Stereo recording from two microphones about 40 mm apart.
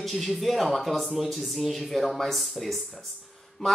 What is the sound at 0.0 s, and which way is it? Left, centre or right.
Speech, centre.